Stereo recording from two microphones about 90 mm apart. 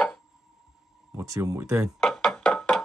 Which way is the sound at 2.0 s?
5° left (ahead or behind).